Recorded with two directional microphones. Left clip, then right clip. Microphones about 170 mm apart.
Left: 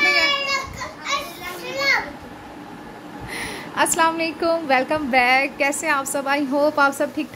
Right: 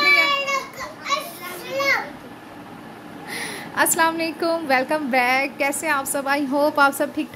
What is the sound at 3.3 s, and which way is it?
A woman's voice, centre (ahead or behind).